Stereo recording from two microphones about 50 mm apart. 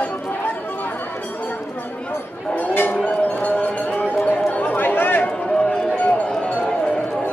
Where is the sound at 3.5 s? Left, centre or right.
Left.